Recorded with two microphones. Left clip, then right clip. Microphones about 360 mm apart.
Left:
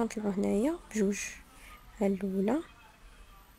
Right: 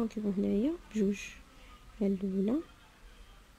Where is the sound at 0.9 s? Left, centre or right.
Centre.